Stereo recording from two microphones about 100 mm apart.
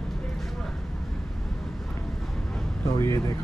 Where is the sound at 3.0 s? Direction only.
30° left (ahead or behind).